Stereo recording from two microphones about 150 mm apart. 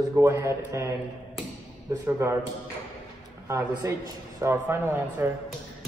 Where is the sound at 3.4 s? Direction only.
20° right (ahead or behind).